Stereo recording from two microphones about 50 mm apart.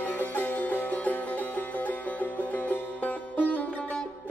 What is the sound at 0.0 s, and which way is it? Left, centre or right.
Music, left.